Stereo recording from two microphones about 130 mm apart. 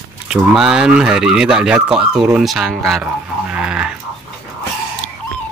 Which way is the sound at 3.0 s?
10° right (ahead or behind).